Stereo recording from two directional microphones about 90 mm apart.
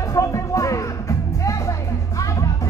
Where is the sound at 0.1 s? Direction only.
35° left (ahead or behind).